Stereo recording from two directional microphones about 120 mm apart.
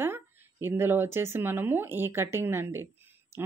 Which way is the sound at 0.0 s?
20° right (ahead or behind).